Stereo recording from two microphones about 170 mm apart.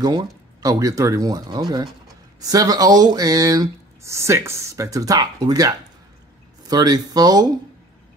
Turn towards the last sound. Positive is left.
turn(degrees=-20)  # may be behind; listen again after turning